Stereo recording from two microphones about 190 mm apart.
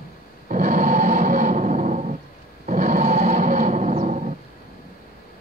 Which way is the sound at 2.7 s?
40° right (ahead or behind).